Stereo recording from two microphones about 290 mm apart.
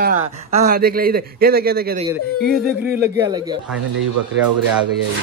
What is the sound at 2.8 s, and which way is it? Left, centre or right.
Speech, centre.